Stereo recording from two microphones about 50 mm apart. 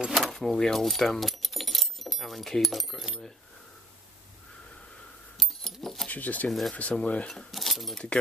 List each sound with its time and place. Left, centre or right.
0.1 s speech: centre
5.4 s dog: centre
5.8 s keys jangling: centre
6.0 s speech: left
7.2 s speech: centre